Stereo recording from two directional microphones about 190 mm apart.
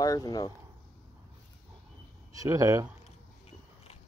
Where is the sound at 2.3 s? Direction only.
15° right (ahead or behind).